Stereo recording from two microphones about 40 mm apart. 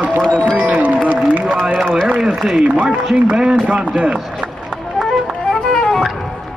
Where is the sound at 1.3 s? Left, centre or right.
Right.